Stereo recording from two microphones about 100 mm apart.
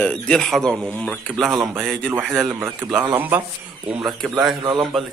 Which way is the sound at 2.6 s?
15° right (ahead or behind).